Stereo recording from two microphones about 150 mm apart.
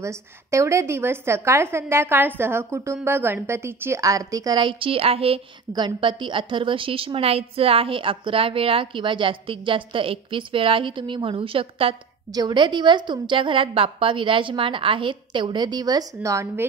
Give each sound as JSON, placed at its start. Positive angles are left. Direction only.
{"t": 0.0, "sound": "a woman's voice", "side_deg": -20}
{"t": 5.7, "sound": "a woman's voice", "side_deg": -30}
{"t": 12.3, "sound": "a woman's voice", "side_deg": -25}